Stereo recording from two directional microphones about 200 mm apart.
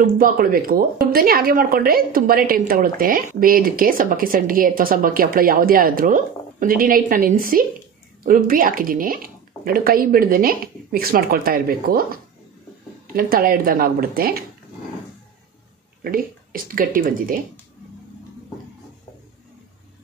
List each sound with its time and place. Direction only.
0.0 s speech: 45° right (ahead or behind)
16.0 s speech: 45° right (ahead or behind)